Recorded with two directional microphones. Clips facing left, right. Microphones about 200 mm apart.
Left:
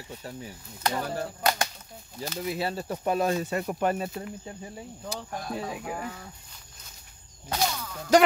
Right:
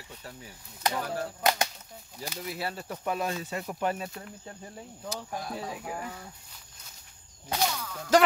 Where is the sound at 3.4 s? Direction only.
55° left (ahead or behind).